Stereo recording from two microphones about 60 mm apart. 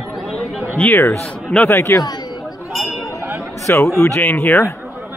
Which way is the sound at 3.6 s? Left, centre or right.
Left.